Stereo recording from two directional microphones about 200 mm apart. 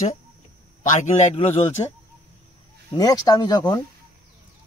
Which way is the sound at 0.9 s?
40° left (ahead or behind).